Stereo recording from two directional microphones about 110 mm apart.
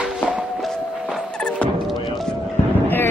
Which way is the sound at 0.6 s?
Centre (ahead or behind).